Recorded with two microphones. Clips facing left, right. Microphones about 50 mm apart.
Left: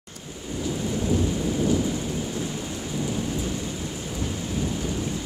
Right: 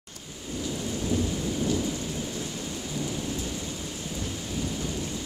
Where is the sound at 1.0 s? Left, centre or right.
Left.